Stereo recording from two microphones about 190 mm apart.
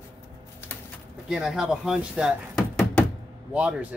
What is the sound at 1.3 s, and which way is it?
Speech, centre (ahead or behind).